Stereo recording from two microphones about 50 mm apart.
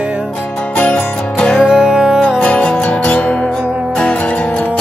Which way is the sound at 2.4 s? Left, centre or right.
Left.